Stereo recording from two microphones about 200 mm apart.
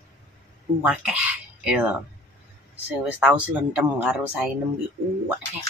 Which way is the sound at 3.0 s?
5° right (ahead or behind).